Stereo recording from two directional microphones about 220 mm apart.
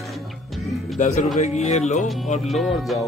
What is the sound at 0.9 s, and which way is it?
Speech, 35° left (ahead or behind).